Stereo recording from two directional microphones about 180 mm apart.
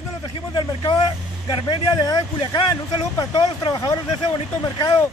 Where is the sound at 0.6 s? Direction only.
25° left (ahead or behind).